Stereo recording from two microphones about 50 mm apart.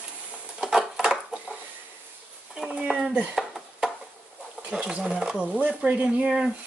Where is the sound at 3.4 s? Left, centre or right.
Centre.